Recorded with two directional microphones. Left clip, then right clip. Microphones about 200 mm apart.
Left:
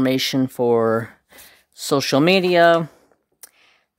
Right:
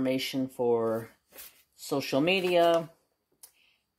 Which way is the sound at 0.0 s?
50° left (ahead or behind).